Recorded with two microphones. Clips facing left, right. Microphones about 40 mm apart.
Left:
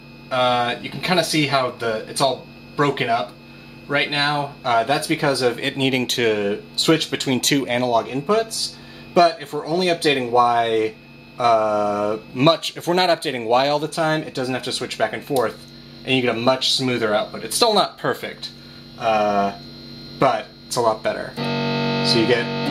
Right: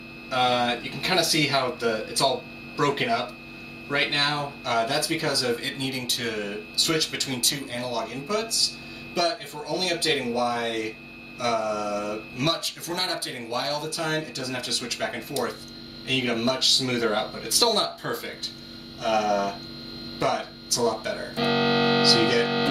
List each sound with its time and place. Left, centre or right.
0.3 s speech: left
5.6 s speech: left
7.9 s speech: left
21.4 s speech: right